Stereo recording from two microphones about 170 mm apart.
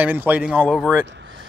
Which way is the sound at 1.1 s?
90° right.